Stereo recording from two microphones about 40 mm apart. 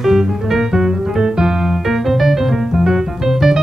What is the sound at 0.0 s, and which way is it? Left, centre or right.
Music, centre.